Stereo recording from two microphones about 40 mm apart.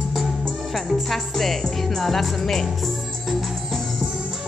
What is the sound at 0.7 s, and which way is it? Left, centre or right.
Music, centre.